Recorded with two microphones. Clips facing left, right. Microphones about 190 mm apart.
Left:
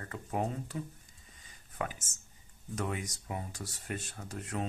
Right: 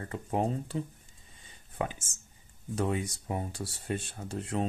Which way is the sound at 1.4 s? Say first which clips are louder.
Right 4 dB; 25° right (ahead or behind).